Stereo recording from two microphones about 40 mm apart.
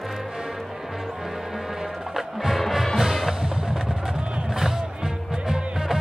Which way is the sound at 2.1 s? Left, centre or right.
Centre.